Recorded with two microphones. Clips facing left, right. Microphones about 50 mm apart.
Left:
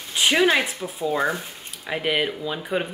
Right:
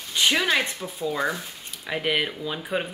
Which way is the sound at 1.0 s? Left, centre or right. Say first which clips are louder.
Left 3 dB; left.